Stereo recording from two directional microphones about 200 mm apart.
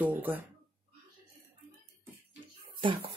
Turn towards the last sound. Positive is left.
turn(degrees=-25)  # may be behind; listen again after turning